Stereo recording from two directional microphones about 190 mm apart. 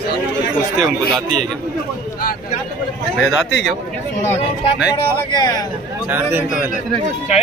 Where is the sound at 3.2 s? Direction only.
Centre (ahead or behind).